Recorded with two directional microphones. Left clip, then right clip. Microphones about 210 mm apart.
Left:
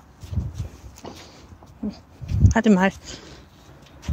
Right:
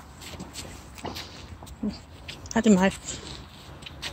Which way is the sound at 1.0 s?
25° left (ahead or behind).